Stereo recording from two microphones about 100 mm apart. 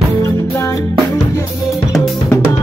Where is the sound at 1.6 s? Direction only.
Centre (ahead or behind).